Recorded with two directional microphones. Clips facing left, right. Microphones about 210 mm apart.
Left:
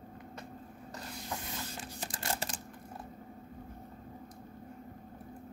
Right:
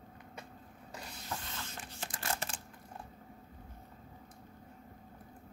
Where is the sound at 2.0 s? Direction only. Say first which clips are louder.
Left 1 dB; 30° left (ahead or behind).